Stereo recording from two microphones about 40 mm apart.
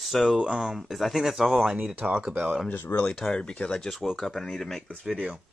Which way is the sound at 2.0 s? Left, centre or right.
Right.